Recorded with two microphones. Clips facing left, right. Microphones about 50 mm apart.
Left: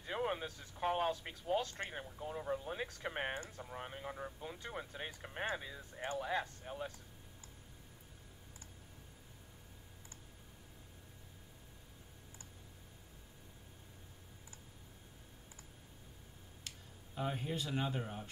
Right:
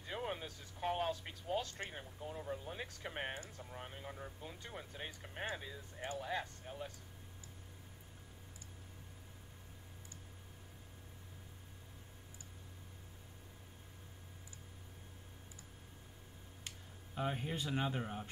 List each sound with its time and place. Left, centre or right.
0.0 s speech: centre
16.6 s speech: centre